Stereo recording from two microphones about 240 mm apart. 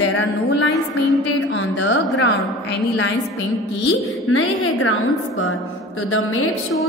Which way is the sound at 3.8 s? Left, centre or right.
Left.